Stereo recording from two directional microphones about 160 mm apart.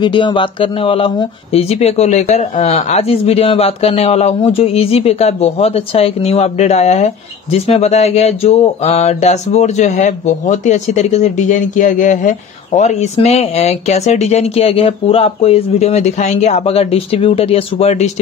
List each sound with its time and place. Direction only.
0.0 s speech: 30° left (ahead or behind)